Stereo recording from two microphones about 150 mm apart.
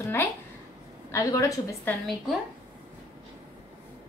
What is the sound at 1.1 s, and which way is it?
Speech, 20° left (ahead or behind).